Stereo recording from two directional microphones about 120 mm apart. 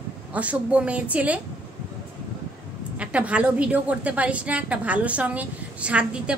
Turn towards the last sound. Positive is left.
turn(degrees=-10)  # may be behind; listen again after turning